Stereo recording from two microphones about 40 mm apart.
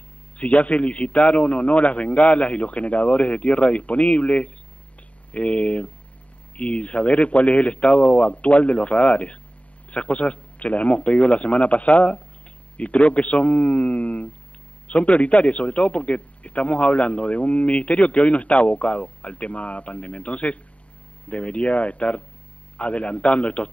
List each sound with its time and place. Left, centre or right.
0.4 s a man's voice: left